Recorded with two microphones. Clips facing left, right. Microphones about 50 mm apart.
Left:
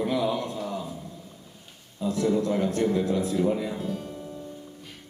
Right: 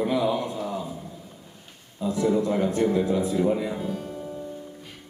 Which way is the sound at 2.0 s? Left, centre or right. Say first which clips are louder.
Right 1 dB; centre.